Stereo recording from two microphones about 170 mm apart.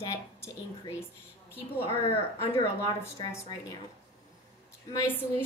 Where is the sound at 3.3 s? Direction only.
20° left (ahead or behind).